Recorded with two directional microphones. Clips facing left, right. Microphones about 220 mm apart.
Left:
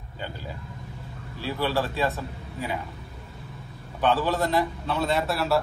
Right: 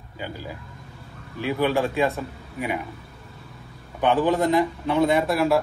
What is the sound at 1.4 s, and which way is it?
Speech, 15° right (ahead or behind).